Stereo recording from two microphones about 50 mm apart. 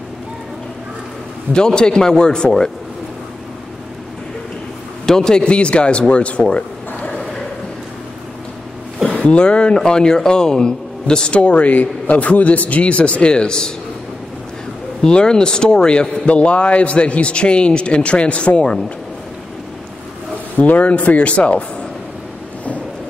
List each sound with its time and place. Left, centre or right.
1.5 s a man's voice: centre
5.0 s a man's voice: centre
9.1 s a sound: left
9.4 s a man's voice: centre
15.0 s a man's voice: centre
20.5 s a man's voice: left